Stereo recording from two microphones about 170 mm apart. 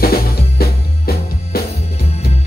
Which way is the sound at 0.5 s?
65° left (ahead or behind).